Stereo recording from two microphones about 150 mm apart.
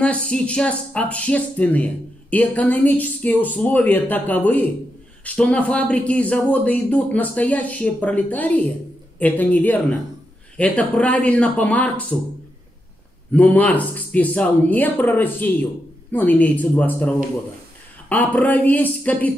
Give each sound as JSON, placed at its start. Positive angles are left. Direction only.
{"t": 0.0, "sound": "speech", "side_deg": 5}
{"t": 13.3, "sound": "speech", "side_deg": 10}